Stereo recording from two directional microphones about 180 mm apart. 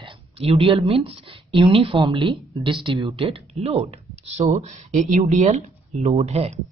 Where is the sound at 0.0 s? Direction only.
30° right (ahead or behind).